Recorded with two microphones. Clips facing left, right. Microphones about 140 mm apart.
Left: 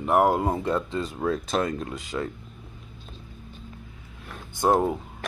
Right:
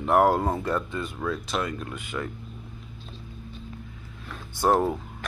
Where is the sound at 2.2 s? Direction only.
30° left (ahead or behind).